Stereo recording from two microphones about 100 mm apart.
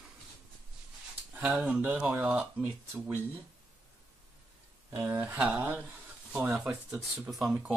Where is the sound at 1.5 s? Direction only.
5° right (ahead or behind).